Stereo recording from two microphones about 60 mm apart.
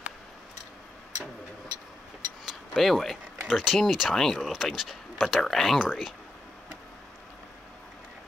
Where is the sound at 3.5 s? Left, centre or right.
Centre.